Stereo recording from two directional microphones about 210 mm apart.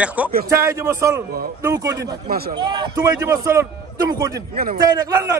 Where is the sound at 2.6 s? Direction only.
20° right (ahead or behind).